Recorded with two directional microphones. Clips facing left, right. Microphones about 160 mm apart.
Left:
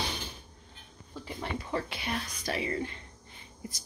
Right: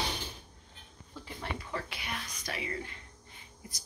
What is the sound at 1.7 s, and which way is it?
Speech, 30° left (ahead or behind).